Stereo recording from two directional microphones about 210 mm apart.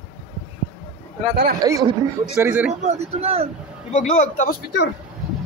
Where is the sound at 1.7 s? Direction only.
15° right (ahead or behind).